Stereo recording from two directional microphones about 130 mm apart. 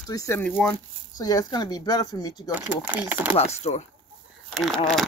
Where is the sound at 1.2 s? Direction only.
30° left (ahead or behind).